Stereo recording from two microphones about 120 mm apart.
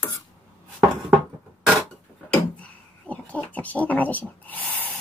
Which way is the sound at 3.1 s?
15° left (ahead or behind).